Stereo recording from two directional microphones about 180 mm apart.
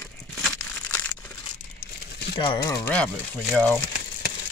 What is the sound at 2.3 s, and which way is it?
Speech, 25° left (ahead or behind).